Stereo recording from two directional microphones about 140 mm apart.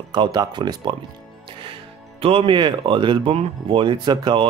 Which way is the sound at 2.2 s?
40° right (ahead or behind).